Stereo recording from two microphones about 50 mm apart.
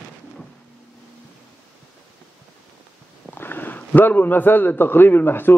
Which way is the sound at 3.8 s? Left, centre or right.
Left.